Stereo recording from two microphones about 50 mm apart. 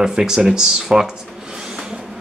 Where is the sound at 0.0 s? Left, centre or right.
Centre.